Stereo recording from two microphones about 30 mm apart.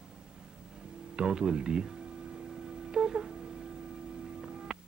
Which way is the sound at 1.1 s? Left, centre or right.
Right.